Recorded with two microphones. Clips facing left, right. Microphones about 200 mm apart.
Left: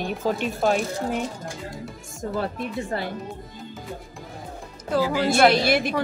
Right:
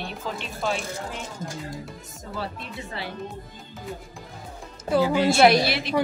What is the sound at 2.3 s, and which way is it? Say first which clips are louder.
Speech: left 6 dB; 50° left (ahead or behind).